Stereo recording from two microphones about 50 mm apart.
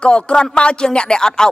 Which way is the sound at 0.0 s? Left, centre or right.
Left.